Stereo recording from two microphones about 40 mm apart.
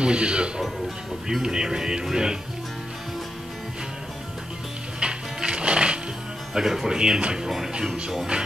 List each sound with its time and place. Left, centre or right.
0.0 s speech: right
5.0 s music: right
6.5 s speech: centre
7.0 s speech: right
7.4 s speech: centre